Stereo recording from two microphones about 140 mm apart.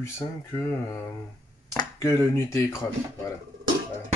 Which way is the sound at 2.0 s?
20° left (ahead or behind).